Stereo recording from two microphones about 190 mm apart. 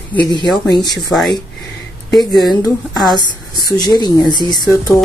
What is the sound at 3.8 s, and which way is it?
Speech, 20° left (ahead or behind).